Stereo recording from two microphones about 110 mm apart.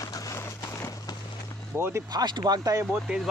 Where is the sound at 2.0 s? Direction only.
40° right (ahead or behind).